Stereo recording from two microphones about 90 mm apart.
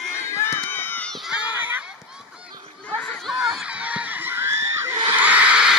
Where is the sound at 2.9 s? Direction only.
10° left (ahead or behind).